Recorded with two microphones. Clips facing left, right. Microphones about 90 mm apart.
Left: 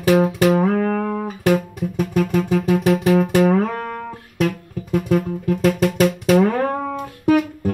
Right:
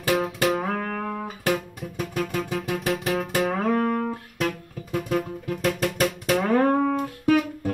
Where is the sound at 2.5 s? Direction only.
35° left (ahead or behind).